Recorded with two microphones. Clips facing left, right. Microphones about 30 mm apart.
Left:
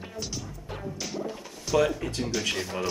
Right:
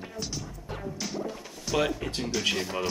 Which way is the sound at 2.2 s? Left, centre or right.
Centre.